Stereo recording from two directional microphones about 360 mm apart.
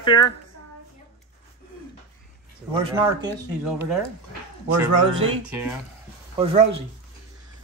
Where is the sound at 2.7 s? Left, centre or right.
Centre.